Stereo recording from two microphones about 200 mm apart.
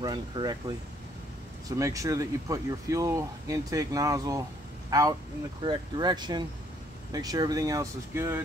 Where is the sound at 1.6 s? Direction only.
15° right (ahead or behind).